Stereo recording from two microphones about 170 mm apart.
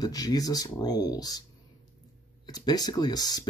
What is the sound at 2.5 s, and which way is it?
Speech, 25° left (ahead or behind).